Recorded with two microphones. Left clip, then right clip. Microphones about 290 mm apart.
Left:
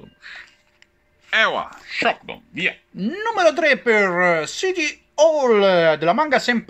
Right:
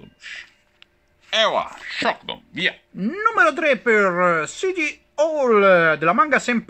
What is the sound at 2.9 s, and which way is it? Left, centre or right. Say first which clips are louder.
Speech: right 6 dB; centre.